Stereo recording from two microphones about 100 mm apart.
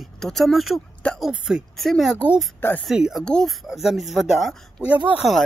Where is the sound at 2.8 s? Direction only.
5° right (ahead or behind).